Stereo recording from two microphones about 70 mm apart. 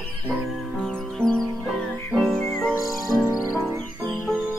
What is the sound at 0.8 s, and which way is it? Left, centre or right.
Music, centre.